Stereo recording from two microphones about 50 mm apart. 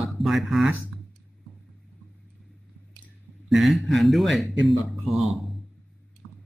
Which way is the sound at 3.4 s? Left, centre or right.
Centre.